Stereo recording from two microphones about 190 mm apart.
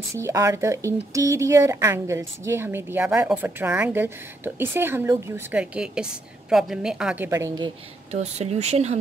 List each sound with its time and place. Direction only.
0.2 s a woman's voice: 15° right (ahead or behind)
7.2 s speech: 15° right (ahead or behind)
8.1 s speech: 35° right (ahead or behind)